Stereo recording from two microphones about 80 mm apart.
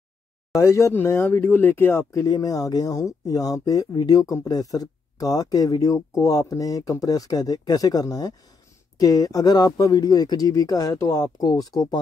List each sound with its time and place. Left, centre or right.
0.6 s speech: left
2.2 s speech: left
11.4 s speech: left